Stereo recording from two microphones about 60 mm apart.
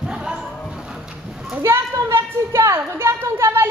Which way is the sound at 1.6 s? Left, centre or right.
Right.